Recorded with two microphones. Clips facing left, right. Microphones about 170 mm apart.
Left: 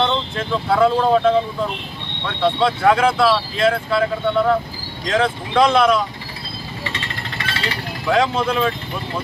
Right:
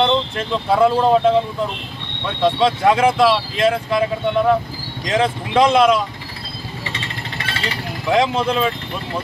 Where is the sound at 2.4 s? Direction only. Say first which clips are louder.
Right 1 dB; 15° right (ahead or behind).